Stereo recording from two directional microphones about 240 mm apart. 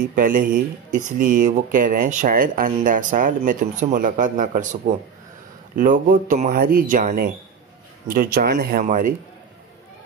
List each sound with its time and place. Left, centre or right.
0.1 s speech: right